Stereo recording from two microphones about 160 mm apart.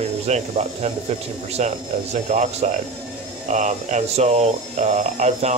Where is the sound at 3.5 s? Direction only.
45° right (ahead or behind).